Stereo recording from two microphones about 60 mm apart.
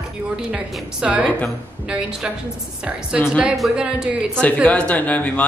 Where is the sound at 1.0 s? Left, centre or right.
Right.